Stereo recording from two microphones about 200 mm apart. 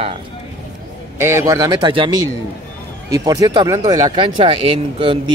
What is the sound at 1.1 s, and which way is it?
A man's voice, 15° right (ahead or behind).